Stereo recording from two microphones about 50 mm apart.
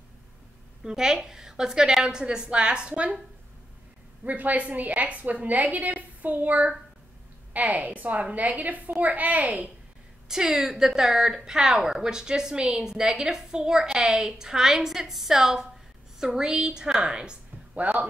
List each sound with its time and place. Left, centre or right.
0.8 s a woman's voice: centre
4.2 s a woman's voice: right
10.2 s a woman's voice: centre
17.8 s a woman's voice: right